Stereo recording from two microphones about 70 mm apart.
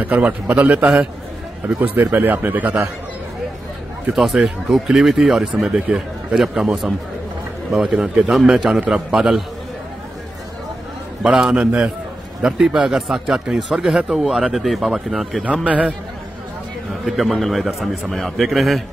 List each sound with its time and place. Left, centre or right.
0.0 s speech: right
4.2 s speech: centre
11.3 s speech: centre
15.6 s speech: centre
17.0 s a man's voice: centre